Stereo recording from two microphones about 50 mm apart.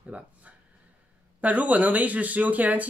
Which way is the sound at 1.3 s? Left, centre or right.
Right.